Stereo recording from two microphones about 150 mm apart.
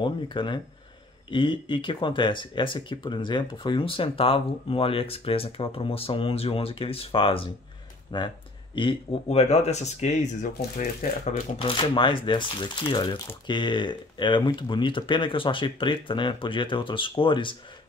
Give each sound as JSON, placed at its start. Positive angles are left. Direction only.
{"t": 0.0, "sound": "speech", "side_deg": 30}
{"t": 11.5, "sound": "speech", "side_deg": 35}